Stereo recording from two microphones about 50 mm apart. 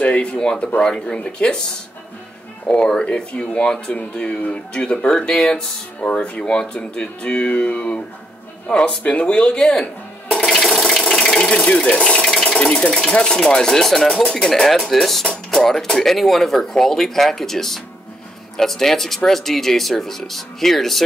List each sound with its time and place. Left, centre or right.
0.0 s speech: left
2.7 s speech: centre
10.3 s water: centre
11.8 s sewing machine: centre
12.4 s sewing machine: left
13.2 s speech: centre